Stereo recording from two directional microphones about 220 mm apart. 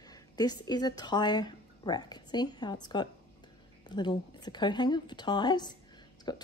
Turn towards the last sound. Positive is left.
turn(degrees=20)  # may be behind; listen again after turning